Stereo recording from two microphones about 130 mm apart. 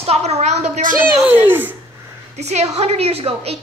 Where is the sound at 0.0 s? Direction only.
55° right (ahead or behind).